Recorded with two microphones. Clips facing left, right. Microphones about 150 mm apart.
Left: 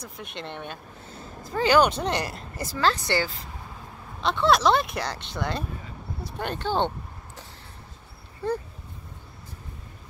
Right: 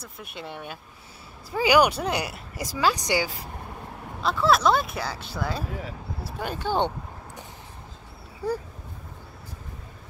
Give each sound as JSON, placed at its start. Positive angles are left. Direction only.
{"t": 0.0, "sound": "a woman's voice", "side_deg": -5}
{"t": 4.2, "sound": "speech", "side_deg": -5}
{"t": 5.7, "sound": "speech", "side_deg": -80}
{"t": 6.4, "sound": "a woman's voice", "side_deg": -10}